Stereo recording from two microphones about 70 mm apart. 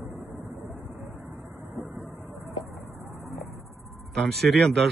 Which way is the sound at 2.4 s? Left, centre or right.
Right.